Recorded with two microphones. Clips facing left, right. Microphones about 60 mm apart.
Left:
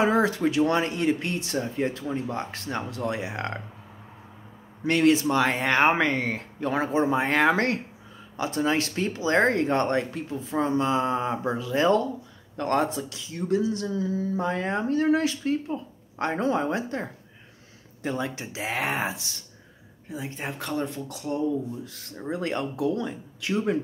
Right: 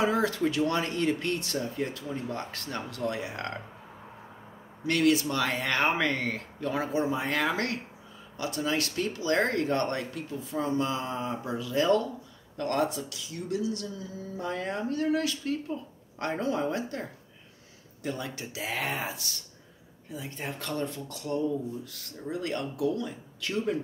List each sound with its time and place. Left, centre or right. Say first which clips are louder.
0.0 s speech: left 4 dB; left
4.8 s speech: left 4 dB; left
22.3 s speech: left 4 dB; left
23.4 s speech: left 4 dB; centre